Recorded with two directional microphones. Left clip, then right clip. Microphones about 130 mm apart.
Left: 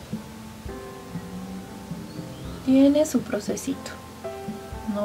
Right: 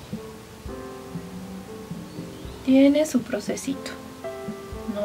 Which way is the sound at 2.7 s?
Centre (ahead or behind).